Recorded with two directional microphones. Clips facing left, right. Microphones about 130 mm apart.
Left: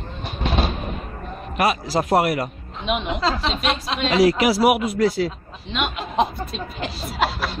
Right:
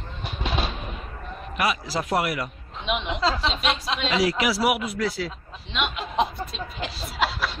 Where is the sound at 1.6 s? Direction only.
45° left (ahead or behind).